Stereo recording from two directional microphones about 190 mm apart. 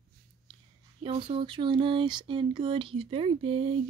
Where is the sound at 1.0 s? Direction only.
30° right (ahead or behind).